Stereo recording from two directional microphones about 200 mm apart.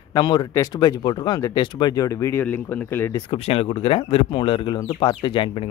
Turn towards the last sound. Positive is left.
turn(degrees=25)  # may be behind; listen again after turning